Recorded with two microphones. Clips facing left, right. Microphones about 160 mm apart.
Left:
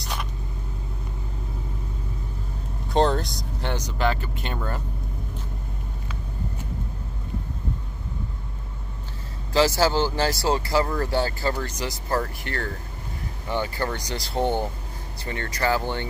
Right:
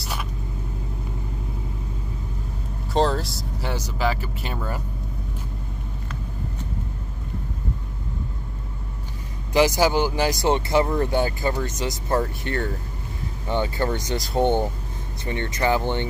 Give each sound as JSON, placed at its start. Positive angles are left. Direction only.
{"t": 0.0, "sound": "vehicle", "side_deg": -5}
{"t": 2.9, "sound": "speech", "side_deg": 0}
{"t": 9.5, "sound": "speech", "side_deg": -15}